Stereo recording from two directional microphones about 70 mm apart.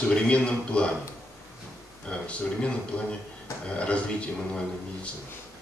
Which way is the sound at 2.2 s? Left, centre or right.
Centre.